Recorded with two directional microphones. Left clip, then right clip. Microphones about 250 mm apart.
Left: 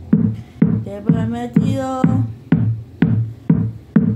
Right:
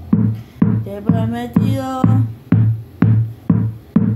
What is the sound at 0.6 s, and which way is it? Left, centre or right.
Music, centre.